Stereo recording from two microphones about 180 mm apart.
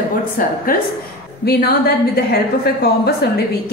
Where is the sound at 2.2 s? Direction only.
60° left (ahead or behind).